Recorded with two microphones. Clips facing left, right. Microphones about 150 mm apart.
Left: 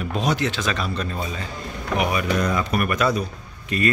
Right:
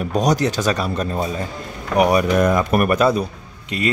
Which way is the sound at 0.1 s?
40° right (ahead or behind).